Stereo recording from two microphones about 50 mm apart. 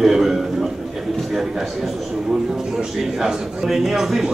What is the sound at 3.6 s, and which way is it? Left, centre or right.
Speech, centre.